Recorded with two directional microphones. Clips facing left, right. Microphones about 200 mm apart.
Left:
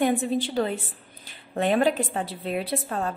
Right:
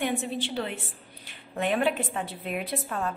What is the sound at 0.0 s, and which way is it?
A woman's voice, 40° left (ahead or behind).